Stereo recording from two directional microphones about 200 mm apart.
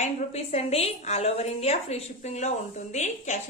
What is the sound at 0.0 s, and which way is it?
A woman's voice, 30° left (ahead or behind).